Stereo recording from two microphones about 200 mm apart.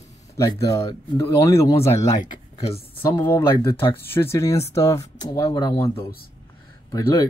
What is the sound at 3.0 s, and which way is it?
Speech, 10° left (ahead or behind).